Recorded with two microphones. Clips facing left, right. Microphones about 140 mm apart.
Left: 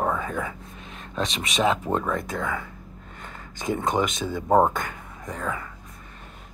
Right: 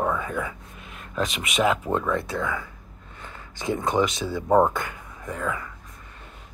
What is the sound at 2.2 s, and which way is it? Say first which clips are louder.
Speech: right 1 dB; 45° left (ahead or behind).